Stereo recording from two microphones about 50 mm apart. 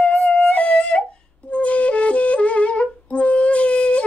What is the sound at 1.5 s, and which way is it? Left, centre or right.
Music, left.